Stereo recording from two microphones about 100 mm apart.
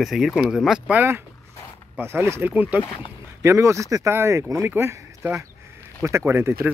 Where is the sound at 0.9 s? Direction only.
20° right (ahead or behind).